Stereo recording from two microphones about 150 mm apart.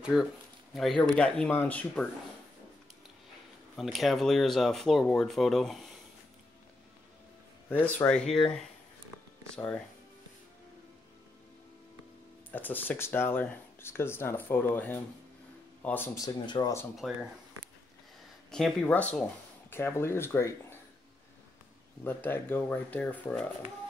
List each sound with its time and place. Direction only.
0.0 s speech: 5° right (ahead or behind)
3.7 s speech: centre (ahead or behind)
7.7 s speech: 10° left (ahead or behind)
12.4 s speech: 10° left (ahead or behind)
16.2 s speech: 25° left (ahead or behind)
16.9 s speech: centre (ahead or behind)
18.5 s speech: 5° left (ahead or behind)
22.0 s speech: 15° left (ahead or behind)